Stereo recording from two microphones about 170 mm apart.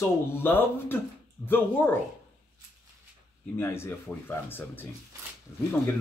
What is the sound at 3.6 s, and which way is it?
Speech, 15° left (ahead or behind).